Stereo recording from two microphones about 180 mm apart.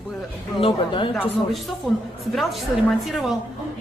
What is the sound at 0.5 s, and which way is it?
Speech, 30° left (ahead or behind).